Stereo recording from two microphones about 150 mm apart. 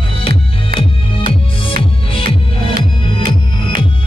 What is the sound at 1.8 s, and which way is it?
Music, 35° left (ahead or behind).